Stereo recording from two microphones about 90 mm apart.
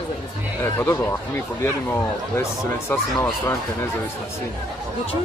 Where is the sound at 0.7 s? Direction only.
30° left (ahead or behind).